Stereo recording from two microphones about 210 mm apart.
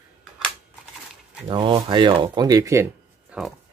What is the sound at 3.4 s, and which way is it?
Speech, 5° right (ahead or behind).